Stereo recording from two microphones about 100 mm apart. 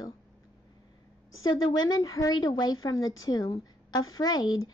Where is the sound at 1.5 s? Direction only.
40° left (ahead or behind).